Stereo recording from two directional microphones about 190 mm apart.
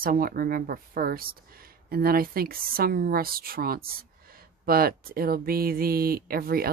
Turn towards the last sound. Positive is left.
turn(degrees=-50)  # may be behind; listen again after turning